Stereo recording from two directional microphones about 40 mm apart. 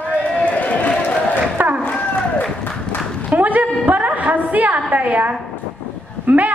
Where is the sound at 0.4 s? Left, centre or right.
Left.